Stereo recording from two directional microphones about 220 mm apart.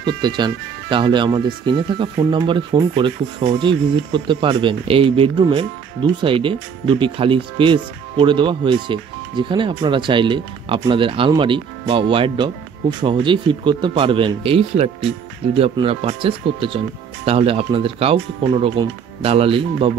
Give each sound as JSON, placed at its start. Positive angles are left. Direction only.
{"t": 0.0, "sound": "speech", "side_deg": -20}